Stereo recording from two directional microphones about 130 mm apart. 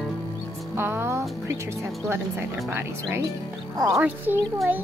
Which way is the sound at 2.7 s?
15° right (ahead or behind).